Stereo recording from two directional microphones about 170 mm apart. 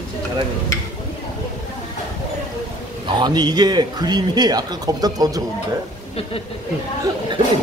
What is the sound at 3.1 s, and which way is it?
A man's voice, 25° right (ahead or behind).